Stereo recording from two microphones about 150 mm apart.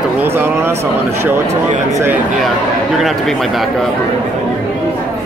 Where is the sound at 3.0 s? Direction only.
Centre (ahead or behind).